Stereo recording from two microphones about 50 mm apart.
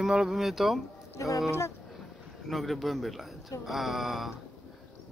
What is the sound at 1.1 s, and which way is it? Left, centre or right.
Speech, left.